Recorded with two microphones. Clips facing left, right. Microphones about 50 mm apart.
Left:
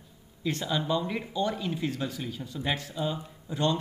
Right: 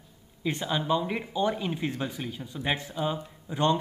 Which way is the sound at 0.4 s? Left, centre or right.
Centre.